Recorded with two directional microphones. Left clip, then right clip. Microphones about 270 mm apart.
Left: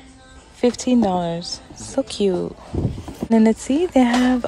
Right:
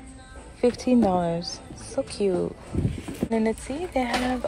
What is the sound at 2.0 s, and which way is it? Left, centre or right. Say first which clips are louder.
A woman's voice: left 4 dB; centre.